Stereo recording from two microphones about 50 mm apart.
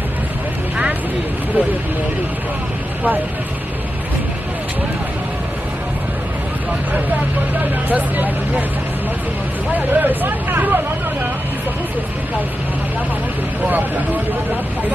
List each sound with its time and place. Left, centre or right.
7.9 s speech: right
9.8 s speech: right
13.7 s speech: right